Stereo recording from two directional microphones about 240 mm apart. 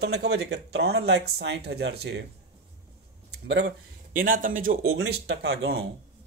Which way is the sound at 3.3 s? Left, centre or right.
Right.